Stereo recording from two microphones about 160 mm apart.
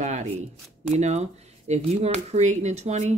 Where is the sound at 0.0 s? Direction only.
45° right (ahead or behind).